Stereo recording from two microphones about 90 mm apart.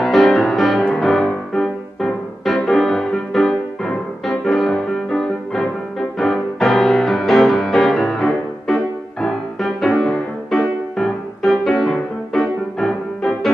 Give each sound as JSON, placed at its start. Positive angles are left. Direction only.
{"t": 0.0, "sound": "music", "side_deg": 5}